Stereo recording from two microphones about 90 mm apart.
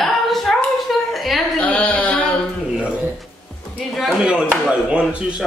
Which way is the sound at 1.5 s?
15° left (ahead or behind).